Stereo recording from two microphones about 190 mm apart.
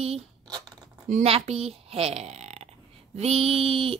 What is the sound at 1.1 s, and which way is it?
Speech, 35° right (ahead or behind).